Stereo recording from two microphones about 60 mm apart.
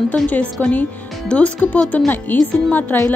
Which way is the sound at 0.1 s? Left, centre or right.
Left.